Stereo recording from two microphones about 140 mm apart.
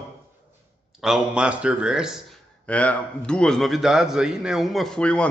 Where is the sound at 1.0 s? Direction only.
5° right (ahead or behind).